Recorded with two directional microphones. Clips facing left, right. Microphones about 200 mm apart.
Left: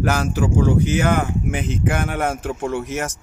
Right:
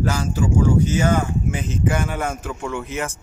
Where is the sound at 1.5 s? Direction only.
60° left (ahead or behind).